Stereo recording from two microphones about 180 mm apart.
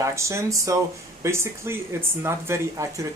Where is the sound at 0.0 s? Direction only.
15° right (ahead or behind).